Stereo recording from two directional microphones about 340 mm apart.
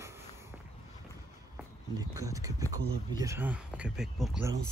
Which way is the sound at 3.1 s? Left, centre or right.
Centre.